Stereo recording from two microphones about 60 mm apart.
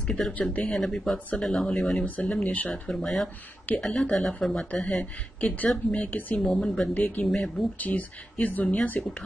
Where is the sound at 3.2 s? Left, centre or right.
Left.